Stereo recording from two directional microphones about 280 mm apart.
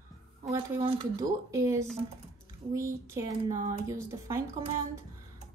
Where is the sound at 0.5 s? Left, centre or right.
Centre.